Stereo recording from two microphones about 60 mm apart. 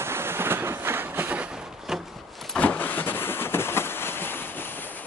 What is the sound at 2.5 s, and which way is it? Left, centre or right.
Vehicle, left.